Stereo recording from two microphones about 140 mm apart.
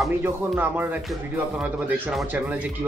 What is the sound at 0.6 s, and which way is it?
Speech, 15° right (ahead or behind).